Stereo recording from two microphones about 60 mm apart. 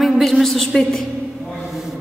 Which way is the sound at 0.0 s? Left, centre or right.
Centre.